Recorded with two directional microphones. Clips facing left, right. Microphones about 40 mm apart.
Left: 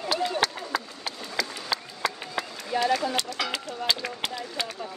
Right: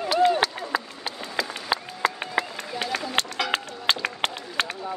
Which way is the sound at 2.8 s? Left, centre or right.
Right.